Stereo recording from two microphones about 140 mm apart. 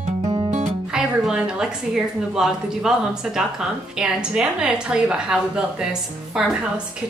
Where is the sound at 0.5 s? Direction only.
60° right (ahead or behind).